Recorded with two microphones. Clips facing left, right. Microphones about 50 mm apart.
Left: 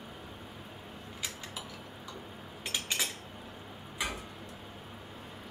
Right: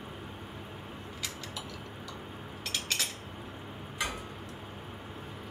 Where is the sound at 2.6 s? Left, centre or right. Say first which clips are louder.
Even; centre.